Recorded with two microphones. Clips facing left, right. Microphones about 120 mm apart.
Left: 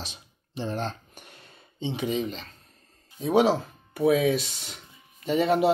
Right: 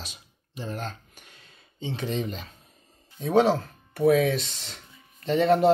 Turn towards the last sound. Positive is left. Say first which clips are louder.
# right 2 dB
turn(degrees=5)  # may be behind; listen again after turning